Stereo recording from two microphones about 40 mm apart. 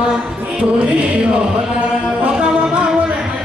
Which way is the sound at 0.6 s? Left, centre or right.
Right.